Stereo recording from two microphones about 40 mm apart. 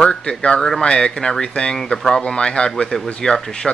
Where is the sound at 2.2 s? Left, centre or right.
Left.